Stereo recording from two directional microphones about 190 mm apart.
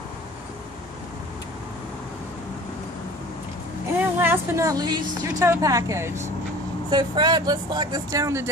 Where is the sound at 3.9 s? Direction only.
10° right (ahead or behind).